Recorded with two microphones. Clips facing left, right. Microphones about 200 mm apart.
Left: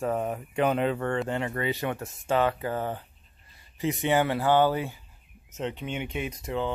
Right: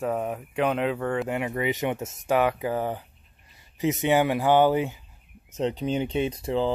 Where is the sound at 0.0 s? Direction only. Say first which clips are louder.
Right 1 dB; centre (ahead or behind); by 5.0 s 20° right (ahead or behind).